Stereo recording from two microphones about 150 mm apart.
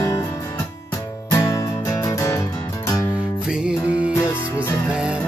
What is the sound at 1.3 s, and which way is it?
Music, 20° left (ahead or behind).